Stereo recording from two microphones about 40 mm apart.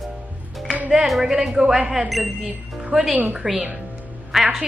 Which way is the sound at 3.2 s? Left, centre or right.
Right.